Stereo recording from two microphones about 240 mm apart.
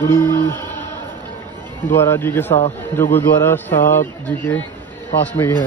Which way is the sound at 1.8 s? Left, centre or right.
Centre.